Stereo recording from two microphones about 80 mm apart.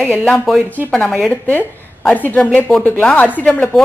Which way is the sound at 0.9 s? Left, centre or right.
Centre.